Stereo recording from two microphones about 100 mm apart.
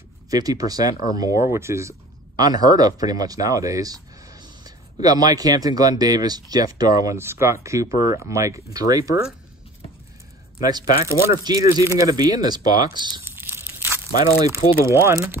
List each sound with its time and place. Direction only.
0.3 s speech: 40° right (ahead or behind)
7.2 s speech: 25° right (ahead or behind)
10.6 s speech: 35° right (ahead or behind)
13.2 s crunch: 20° right (ahead or behind)
14.9 s speech: 30° right (ahead or behind)